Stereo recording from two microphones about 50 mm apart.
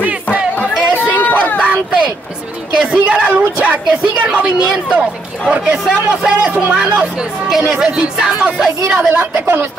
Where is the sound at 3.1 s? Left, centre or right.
Right.